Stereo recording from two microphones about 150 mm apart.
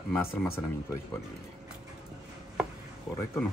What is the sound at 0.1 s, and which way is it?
Speech, 15° left (ahead or behind).